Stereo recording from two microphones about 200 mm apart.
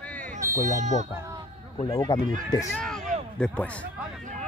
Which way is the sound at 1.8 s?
20° left (ahead or behind).